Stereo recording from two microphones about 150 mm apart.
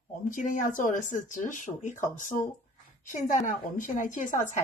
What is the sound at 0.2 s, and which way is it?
Speech, 60° left (ahead or behind).